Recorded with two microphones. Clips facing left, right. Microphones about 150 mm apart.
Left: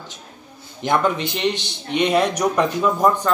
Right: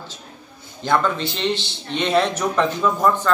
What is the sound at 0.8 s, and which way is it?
A man's voice, 15° left (ahead or behind).